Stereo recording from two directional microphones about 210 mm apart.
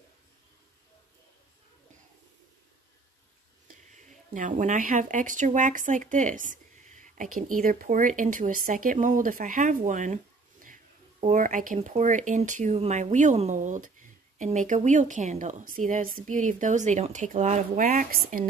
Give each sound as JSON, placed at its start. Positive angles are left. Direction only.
{"t": 4.3, "sound": "speech", "side_deg": -40}